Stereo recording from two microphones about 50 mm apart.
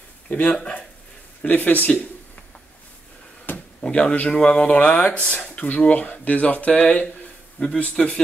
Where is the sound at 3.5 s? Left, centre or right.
Left.